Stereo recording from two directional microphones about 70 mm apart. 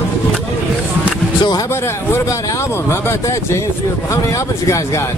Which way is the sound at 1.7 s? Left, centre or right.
Left.